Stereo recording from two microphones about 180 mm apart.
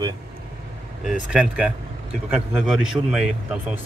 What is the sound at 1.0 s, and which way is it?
A man's voice, 5° right (ahead or behind).